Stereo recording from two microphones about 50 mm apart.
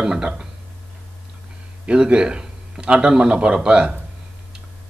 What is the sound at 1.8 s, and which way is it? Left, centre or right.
A man's voice, centre.